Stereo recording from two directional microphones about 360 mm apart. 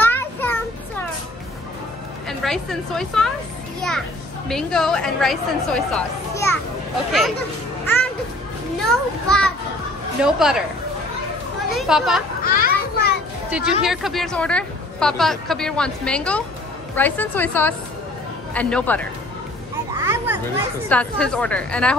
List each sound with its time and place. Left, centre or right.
0.0 s children playing: centre
2.2 s a woman's voice: centre
4.5 s a woman's voice: centre
7.8 s music: centre
8.9 s a woman's voice: centre
11.7 s a woman's voice: centre
12.4 s children playing: left
13.5 s a woman's voice: centre
20.0 s children playing: centre
20.9 s a woman's voice: centre